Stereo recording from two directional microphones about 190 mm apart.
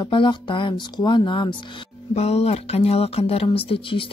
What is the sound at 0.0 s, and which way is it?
Speech, 25° left (ahead or behind).